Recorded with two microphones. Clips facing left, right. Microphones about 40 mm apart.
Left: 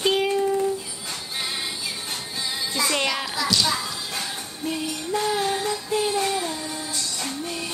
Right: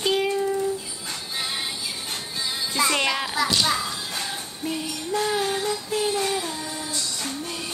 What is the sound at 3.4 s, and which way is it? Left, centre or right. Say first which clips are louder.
Speech: even; right.